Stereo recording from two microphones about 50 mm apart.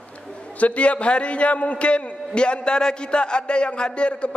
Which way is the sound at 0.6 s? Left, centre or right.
Left.